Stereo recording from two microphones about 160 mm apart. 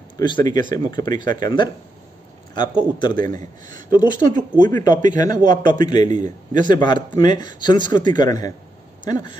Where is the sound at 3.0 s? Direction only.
30° left (ahead or behind).